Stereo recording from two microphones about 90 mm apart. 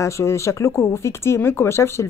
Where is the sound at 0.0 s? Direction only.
30° left (ahead or behind).